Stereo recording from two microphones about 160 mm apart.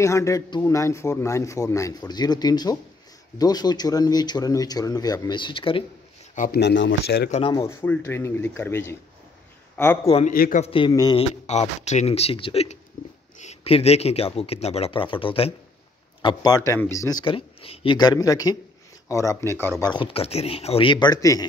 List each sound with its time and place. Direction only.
0.0 s a man's voice: 20° left (ahead or behind)
6.3 s speech: 65° left (ahead or behind); by 7.2 s 90° left
7.4 s a man's voice: 20° left (ahead or behind)
10.3 s a man's voice: 65° left (ahead or behind)
10.6 s a man's voice: 35° left (ahead or behind)
11.1 s a man's voice: 45° left (ahead or behind); by 17.2 s 20° left (ahead or behind)
17.2 s a man's voice: 35° left (ahead or behind)
19.8 s speech: 30° left (ahead or behind)